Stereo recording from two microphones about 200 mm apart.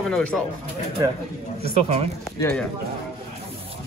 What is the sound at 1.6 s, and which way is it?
Speech, 30° right (ahead or behind).